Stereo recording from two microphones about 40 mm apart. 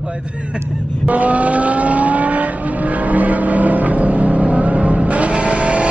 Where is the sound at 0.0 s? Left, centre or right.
Right.